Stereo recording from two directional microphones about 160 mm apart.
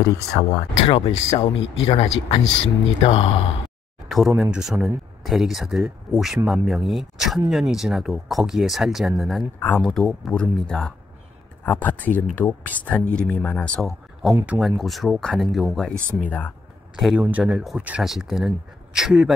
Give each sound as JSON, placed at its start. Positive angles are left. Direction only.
{"t": 0.0, "sound": "speech", "side_deg": 30}
{"t": 4.4, "sound": "speech", "side_deg": -5}
{"t": 16.9, "sound": "speech", "side_deg": -5}